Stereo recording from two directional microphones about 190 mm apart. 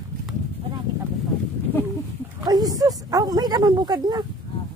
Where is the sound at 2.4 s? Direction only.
20° right (ahead or behind).